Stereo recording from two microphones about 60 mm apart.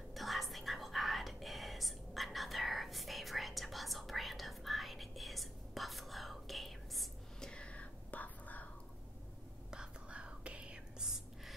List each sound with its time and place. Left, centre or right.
0.1 s whispering: centre
7.3 s whispering: centre
9.7 s whispering: centre